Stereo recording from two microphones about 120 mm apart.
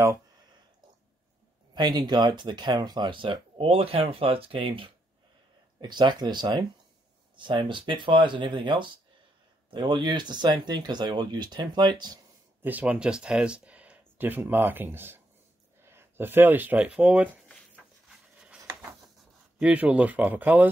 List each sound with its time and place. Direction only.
1.8 s speech: 35° right (ahead or behind)
12.6 s speech: 10° right (ahead or behind)
18.1 s a sound: 10° right (ahead or behind)
19.6 s speech: 10° right (ahead or behind)